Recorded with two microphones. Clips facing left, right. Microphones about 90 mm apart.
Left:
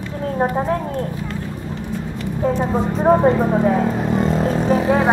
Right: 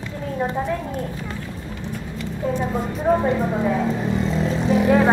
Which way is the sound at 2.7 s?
45° left (ahead or behind).